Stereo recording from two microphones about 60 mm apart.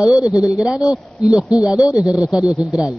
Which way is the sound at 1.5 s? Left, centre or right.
Left.